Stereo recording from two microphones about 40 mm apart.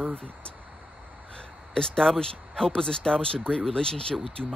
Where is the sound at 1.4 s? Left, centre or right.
Centre.